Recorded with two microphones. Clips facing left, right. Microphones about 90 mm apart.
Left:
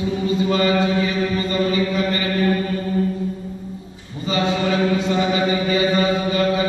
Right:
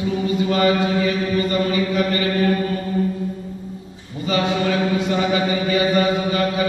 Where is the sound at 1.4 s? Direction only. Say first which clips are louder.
Even; 25° left (ahead or behind).